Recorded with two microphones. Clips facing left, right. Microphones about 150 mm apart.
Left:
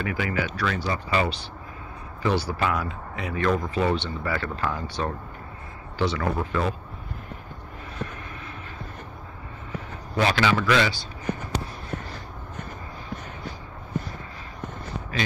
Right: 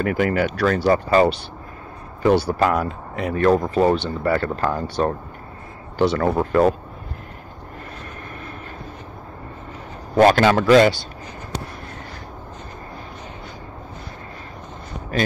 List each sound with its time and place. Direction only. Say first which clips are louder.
0.0 s speech: right 8 dB; 50° right (ahead or behind)
0.9 s speech: right 9 dB; 35° right (ahead or behind)
2.2 s speech: right 8 dB; 55° right (ahead or behind)
10.1 s speech: right 9 dB; 45° right (ahead or behind)
11.3 s a sound: left 13 dB; 55° left (ahead or behind)